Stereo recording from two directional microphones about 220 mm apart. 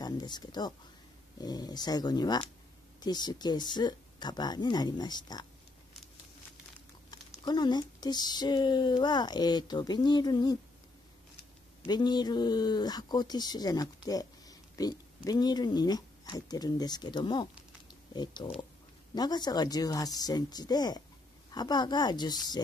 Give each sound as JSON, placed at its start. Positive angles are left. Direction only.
{"t": 0.0, "sound": "speech", "side_deg": 20}
{"t": 7.1, "sound": "speech", "side_deg": 20}
{"t": 11.8, "sound": "speech", "side_deg": 20}